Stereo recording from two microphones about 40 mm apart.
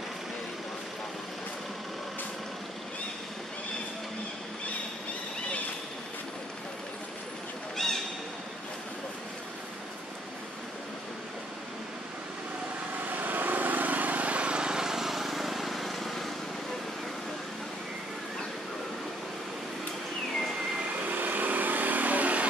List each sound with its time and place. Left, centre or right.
7.7 s a sound: centre
13.1 s vehicle: right; by 16.3 s centre
21.1 s vehicle: right